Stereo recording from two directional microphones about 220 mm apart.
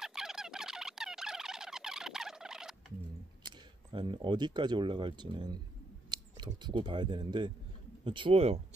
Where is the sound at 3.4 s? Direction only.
20° right (ahead or behind).